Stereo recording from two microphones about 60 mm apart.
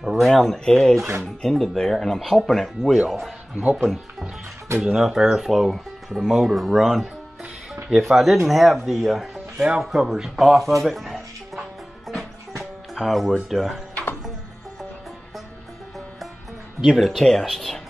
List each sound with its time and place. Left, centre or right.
0.0 s speech: centre
0.9 s speech: right
1.2 s speech: centre
10.8 s music: centre
12.9 s speech: centre
16.8 s speech: centre